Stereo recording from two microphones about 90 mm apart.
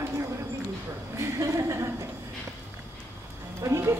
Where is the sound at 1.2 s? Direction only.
35° right (ahead or behind).